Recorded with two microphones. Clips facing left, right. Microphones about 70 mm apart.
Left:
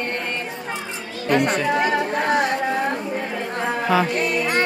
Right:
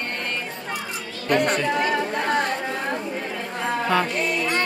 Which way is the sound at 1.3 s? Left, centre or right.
Centre.